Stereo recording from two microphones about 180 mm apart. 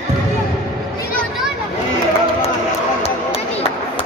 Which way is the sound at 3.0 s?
35° left (ahead or behind).